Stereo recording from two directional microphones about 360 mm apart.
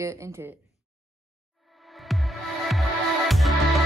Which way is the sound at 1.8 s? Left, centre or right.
Centre.